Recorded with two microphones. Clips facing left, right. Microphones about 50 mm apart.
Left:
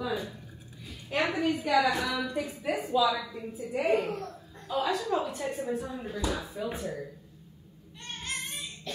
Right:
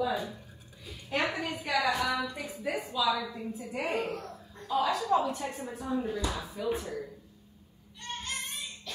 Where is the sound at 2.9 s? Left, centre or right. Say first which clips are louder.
Left 4 dB; left.